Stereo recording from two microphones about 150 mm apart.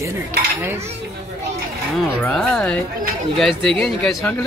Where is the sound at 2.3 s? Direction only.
5° left (ahead or behind).